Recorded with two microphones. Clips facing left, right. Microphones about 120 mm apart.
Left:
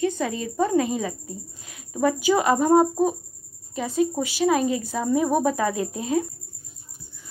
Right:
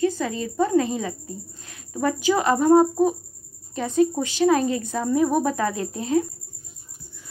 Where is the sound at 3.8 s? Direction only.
5° left (ahead or behind); by 6.3 s 20° left (ahead or behind).